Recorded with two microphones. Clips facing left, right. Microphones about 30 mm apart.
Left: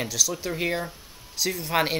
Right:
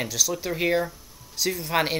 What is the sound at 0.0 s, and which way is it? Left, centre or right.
Speech, centre.